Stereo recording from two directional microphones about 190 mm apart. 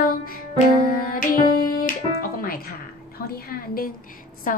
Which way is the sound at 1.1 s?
50° left (ahead or behind).